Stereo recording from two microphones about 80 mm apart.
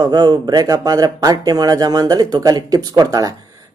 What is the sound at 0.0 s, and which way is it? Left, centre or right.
Speech, right.